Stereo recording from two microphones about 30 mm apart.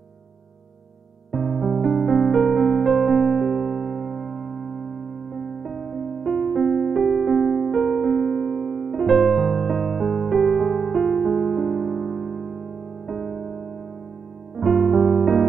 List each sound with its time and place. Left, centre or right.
1.3 s electric piano: centre
14.6 s music: centre